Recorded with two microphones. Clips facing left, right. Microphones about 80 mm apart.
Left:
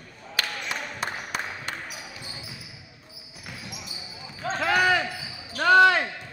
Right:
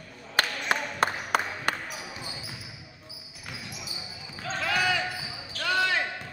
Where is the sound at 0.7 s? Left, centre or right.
Right.